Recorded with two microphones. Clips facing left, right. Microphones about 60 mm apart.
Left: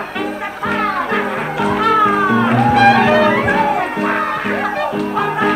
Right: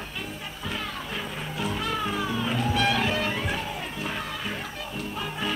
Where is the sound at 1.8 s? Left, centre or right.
Left.